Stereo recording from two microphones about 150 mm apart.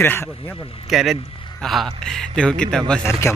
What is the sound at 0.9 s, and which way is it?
A man's voice, centre (ahead or behind).